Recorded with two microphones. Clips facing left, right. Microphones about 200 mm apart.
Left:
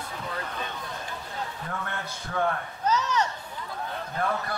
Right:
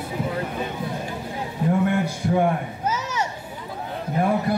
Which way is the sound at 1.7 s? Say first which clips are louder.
Right 14 dB; 15° right (ahead or behind).